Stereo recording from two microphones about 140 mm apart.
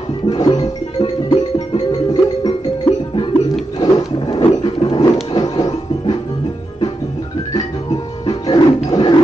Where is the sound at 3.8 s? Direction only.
30° left (ahead or behind).